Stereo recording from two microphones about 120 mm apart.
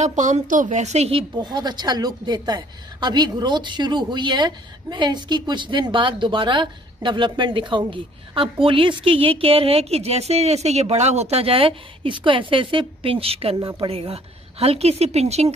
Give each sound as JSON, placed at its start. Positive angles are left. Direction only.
{"t": 0.0, "sound": "speech", "side_deg": -90}
{"t": 1.3, "sound": "a woman's voice", "side_deg": -35}